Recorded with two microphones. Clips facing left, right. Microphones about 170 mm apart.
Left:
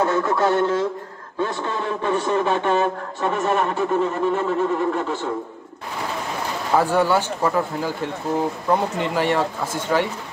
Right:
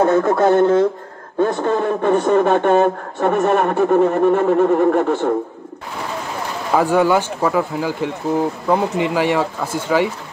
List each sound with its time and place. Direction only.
0.0 s a man's voice: 50° right (ahead or behind)
6.8 s speech: 15° right (ahead or behind)